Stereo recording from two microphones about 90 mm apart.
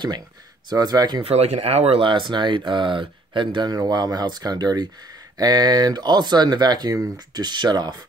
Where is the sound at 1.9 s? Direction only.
70° right (ahead or behind); by 7.9 s 50° right (ahead or behind).